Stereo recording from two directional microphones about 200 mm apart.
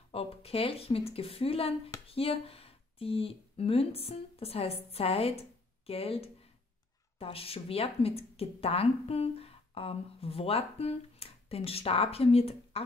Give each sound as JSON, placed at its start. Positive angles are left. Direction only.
{"t": 0.1, "sound": "a woman's voice", "side_deg": 30}